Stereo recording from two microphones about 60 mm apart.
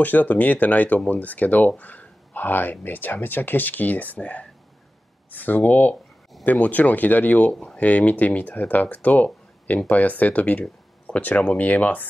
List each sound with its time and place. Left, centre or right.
0.0 s speech: left